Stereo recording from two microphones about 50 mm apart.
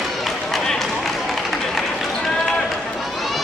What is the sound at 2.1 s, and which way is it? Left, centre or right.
Run, centre.